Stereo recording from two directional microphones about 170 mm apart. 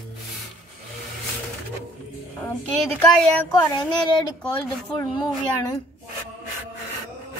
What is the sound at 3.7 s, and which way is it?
Speech, 25° left (ahead or behind).